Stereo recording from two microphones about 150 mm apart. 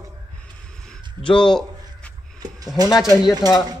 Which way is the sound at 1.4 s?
5° left (ahead or behind).